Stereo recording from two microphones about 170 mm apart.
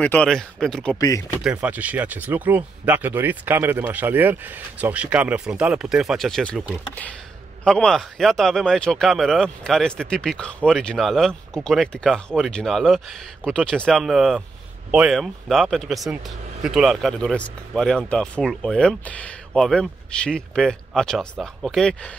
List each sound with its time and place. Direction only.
0.0 s speech: 5° left (ahead or behind)
0.9 s speech: 20° left (ahead or behind)
1.4 s speech: 5° right (ahead or behind)